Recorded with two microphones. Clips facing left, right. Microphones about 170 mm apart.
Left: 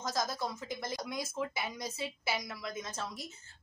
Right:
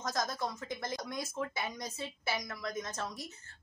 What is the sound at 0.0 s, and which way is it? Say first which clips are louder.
A woman's voice: even; centre (ahead or behind).